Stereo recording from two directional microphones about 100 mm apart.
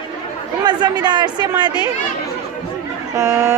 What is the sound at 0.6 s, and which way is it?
Speech, 45° right (ahead or behind).